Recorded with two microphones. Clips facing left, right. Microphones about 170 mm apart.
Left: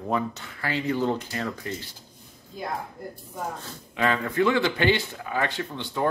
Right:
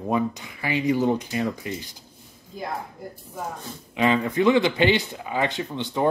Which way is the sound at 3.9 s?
20° right (ahead or behind).